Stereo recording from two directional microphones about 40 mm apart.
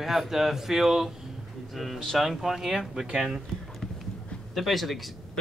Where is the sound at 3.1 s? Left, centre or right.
Centre.